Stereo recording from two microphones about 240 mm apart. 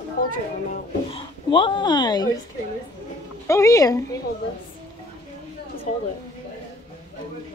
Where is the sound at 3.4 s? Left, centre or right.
Centre.